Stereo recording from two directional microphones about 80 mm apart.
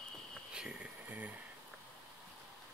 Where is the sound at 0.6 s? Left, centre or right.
Centre.